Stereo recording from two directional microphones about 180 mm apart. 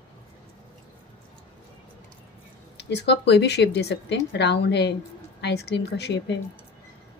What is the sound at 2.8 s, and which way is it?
Speech, 70° left (ahead or behind).